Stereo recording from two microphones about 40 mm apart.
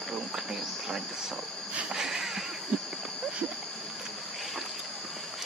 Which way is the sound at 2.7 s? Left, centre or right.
Right.